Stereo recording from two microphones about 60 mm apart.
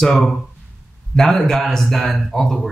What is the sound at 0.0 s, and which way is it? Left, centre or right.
Speech, centre.